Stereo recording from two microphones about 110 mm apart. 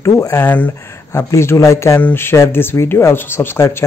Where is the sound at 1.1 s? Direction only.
25° left (ahead or behind).